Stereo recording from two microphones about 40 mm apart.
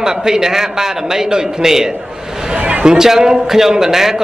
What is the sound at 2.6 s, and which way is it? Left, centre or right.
A man's voice, right.